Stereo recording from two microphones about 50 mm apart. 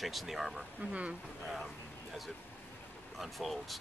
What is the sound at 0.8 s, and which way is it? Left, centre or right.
Speech, right.